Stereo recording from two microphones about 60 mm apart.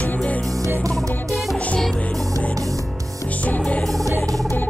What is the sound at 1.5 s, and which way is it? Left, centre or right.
Music, centre.